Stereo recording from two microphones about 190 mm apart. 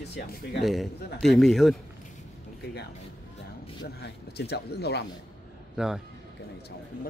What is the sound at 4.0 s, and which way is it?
Speech, 60° left (ahead or behind).